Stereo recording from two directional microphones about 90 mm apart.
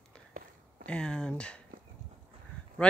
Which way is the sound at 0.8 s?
10° left (ahead or behind).